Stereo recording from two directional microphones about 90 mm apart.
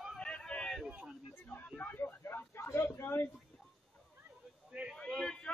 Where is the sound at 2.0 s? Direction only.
25° left (ahead or behind).